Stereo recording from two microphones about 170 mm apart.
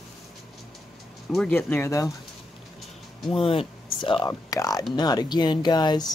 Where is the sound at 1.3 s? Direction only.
5° left (ahead or behind).